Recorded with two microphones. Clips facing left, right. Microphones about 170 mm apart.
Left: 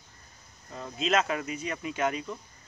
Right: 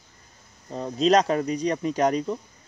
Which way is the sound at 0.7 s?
35° right (ahead or behind).